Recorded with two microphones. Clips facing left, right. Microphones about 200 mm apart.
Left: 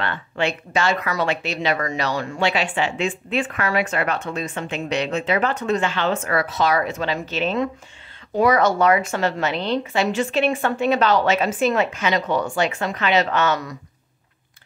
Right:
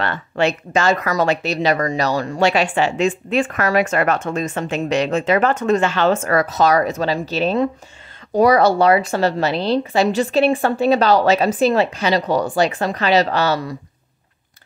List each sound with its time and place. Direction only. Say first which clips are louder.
0.0 s a woman's voice: right 5 dB; 40° right (ahead or behind)